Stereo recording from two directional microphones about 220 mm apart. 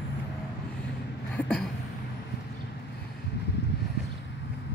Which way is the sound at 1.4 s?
5° left (ahead or behind).